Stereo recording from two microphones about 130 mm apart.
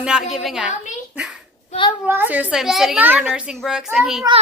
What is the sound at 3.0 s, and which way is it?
A woman's voice, 15° right (ahead or behind).